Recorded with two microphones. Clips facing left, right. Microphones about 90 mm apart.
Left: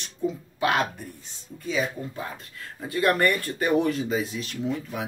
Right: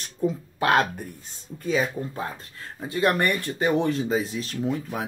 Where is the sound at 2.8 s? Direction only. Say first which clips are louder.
Even; 25° right (ahead or behind).